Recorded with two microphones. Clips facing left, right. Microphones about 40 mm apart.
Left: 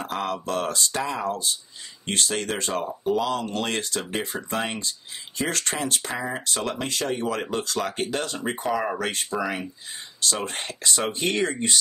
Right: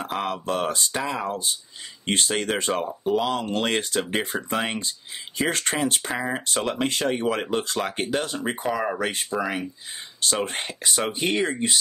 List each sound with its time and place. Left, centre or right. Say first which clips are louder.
0.2 s speech: right 1 dB; right
6.6 s speech: right 4 dB; right; by 8.9 s centre
8.9 s speech: right 1 dB; centre
9.3 s speech: right 1 dB; centre
10.3 s speech: right 3 dB; centre